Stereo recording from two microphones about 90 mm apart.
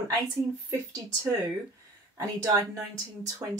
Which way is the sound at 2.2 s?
40° right (ahead or behind).